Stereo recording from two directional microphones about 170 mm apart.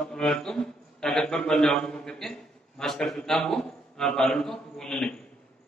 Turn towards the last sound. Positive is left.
turn(degrees=5)  # may be behind; listen again after turning